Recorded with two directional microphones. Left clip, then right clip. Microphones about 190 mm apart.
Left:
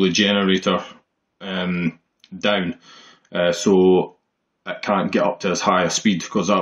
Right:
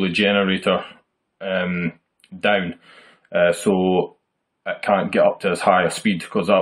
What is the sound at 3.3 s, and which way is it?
Speech, 10° right (ahead or behind).